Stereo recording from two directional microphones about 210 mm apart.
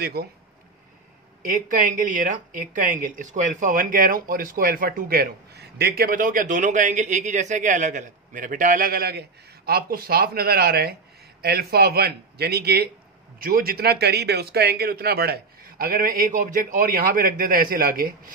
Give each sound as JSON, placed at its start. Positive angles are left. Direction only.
{"t": 0.0, "sound": "speech", "side_deg": -50}
{"t": 1.4, "sound": "speech", "side_deg": -40}